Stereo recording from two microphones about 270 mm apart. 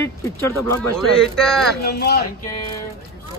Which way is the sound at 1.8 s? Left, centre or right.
Left.